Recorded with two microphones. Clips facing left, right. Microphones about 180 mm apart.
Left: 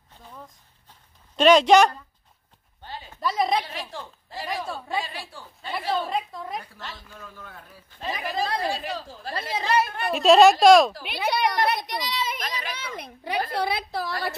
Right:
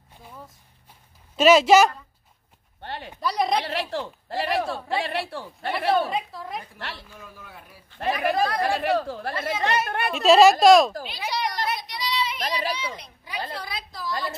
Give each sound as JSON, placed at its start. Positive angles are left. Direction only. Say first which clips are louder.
{"t": 0.1, "sound": "a sound", "louder": "right 1 dB", "side_deg": -10}
{"t": 1.3, "sound": "a woman's voice", "louder": "even", "side_deg": -5}
{"t": 2.8, "sound": "a sound", "louder": "right 4 dB", "side_deg": -65}
{"t": 3.2, "sound": "speech", "louder": "even", "side_deg": 0}
{"t": 3.6, "sound": "speech", "louder": "right 8 dB", "side_deg": -70}
{"t": 6.0, "sound": "speech", "louder": "even", "side_deg": -5}
{"t": 6.8, "sound": "speech", "louder": "right 3 dB", "side_deg": -70}
{"t": 7.2, "sound": "a man's voice", "louder": "left 1 dB", "side_deg": -10}
{"t": 8.0, "sound": "speech", "louder": "right 6 dB", "side_deg": -60}
{"t": 10.1, "sound": "speech", "louder": "even", "side_deg": 0}
{"t": 11.1, "sound": "a child's voice", "louder": "left 4 dB", "side_deg": 60}